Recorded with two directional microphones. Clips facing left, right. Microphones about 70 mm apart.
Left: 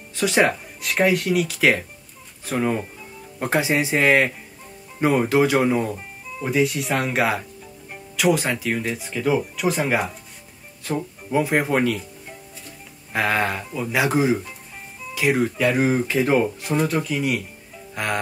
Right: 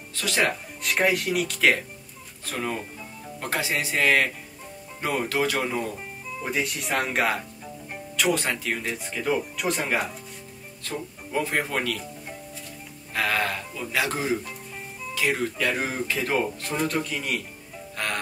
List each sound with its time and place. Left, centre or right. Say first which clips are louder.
0.1 s speech: left 6 dB; centre
0.8 s speech: left 4 dB; centre
2.4 s speech: left 7 dB; centre
5.9 s speech: left 2 dB; centre
13.1 s speech: left 4 dB; left; by 17.4 s centre
17.9 s music: left 5 dB; centre